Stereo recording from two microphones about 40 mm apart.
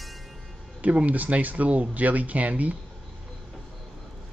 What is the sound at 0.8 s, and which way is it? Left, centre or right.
Speech, right.